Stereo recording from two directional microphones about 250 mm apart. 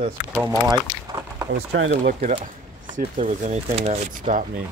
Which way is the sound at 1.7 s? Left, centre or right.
Right.